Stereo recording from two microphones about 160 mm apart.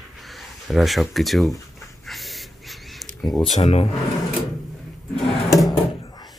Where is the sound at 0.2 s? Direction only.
Centre (ahead or behind).